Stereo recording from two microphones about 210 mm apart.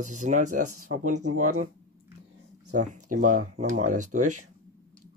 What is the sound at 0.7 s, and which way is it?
Speech, 90° right.